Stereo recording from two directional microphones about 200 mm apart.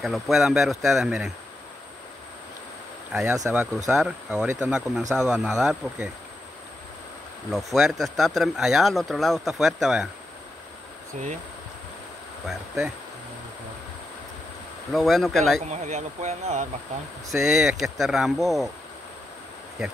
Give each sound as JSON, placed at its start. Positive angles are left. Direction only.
{"t": 0.0, "sound": "speech", "side_deg": 0}
{"t": 3.1, "sound": "speech", "side_deg": -5}
{"t": 7.5, "sound": "speech", "side_deg": 0}
{"t": 12.4, "sound": "speech", "side_deg": 0}
{"t": 14.9, "sound": "speech", "side_deg": 0}
{"t": 15.6, "sound": "speech", "side_deg": -35}
{"t": 17.3, "sound": "speech", "side_deg": 0}